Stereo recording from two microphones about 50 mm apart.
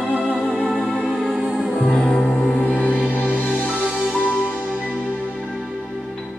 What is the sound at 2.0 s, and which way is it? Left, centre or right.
Music, left.